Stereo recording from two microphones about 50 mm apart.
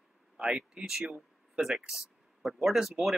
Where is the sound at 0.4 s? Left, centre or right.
Centre.